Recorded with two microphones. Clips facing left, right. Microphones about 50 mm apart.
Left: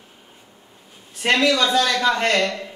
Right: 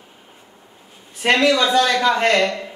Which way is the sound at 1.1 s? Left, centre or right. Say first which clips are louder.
Right 2 dB; centre.